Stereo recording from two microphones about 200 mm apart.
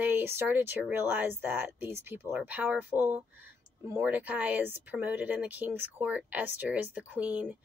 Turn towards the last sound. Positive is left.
turn(degrees=-5)  # may be behind; listen again after turning